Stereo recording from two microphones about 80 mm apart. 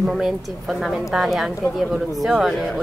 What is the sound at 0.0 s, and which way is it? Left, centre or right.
A woman's voice, centre.